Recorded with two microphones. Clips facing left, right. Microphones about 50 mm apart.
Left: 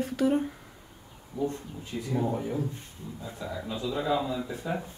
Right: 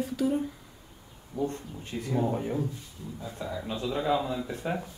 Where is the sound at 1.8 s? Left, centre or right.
Right.